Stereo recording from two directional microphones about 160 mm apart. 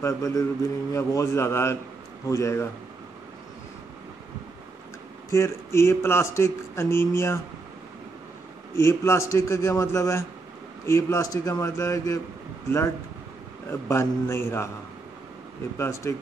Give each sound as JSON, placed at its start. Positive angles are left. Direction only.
{"t": 0.0, "sound": "a man's voice", "side_deg": 20}
{"t": 5.3, "sound": "a man's voice", "side_deg": 15}
{"t": 8.7, "sound": "a man's voice", "side_deg": 15}
{"t": 15.8, "sound": "a man's voice", "side_deg": 15}